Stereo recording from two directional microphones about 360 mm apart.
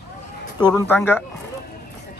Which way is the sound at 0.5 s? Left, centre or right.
Centre.